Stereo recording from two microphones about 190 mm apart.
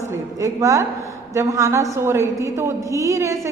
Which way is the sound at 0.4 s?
15° right (ahead or behind).